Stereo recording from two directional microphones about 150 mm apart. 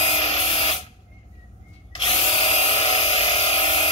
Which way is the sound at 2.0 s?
40° left (ahead or behind).